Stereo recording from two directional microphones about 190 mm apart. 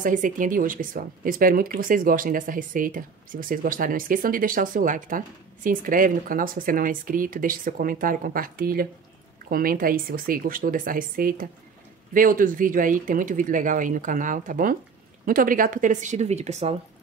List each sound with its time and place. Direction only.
0.0 s speech: 45° right (ahead or behind)